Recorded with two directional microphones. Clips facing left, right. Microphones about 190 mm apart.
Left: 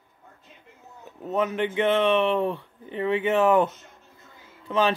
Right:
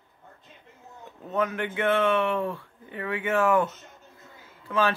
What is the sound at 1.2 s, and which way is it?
Speech, 20° left (ahead or behind).